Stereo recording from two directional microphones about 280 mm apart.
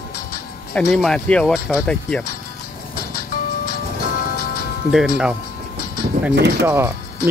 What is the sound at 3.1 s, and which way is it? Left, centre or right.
Music, left.